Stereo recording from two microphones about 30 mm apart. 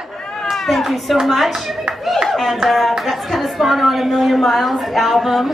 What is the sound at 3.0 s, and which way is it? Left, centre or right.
A woman's voice, centre.